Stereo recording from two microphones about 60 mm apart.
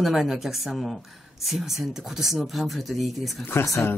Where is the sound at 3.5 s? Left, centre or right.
Left.